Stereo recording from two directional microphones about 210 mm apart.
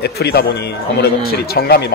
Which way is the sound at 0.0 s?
50° left (ahead or behind).